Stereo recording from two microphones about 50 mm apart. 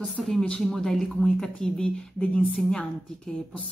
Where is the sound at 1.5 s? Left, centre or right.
Left.